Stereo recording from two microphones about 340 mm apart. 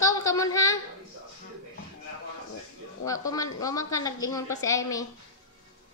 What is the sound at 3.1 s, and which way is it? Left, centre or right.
A woman's voice, centre.